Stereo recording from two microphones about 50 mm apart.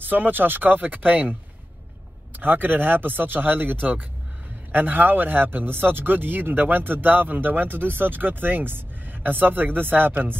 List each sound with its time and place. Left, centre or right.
0.0 s speech: right
2.4 s speech: right